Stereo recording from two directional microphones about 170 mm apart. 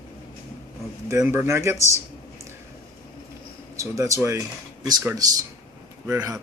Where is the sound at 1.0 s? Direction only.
15° right (ahead or behind).